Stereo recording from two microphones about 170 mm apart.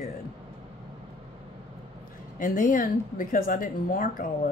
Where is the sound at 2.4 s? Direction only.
55° left (ahead or behind).